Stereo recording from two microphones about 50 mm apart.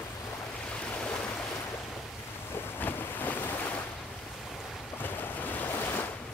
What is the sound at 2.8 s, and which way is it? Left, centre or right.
Boat, left.